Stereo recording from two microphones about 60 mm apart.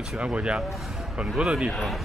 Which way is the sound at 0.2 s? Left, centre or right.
Right.